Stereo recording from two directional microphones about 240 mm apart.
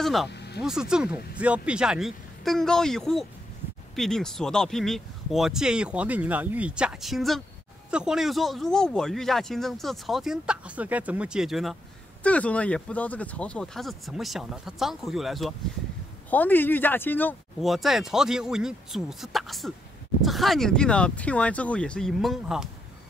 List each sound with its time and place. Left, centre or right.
0.0 s speech: centre
0.3 s a sound: left
0.6 s speech: centre